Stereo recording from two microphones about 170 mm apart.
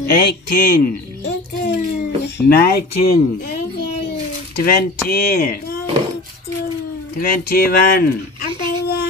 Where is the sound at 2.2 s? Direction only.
65° left (ahead or behind).